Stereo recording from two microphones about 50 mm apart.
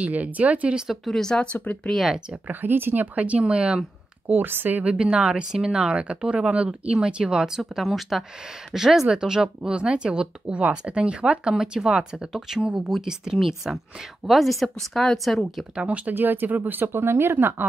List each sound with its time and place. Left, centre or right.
0.0 s speech: right
1.0 s speech: centre
1.5 s speech: left
2.6 s speech: right
3.2 s speech: right
4.3 s speech: right
4.8 s a woman's voice: centre
15.7 s speech: right
16.2 s speech: right
17.0 s speech: right